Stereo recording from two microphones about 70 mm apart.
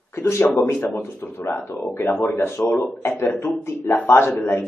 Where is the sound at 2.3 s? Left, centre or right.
Left.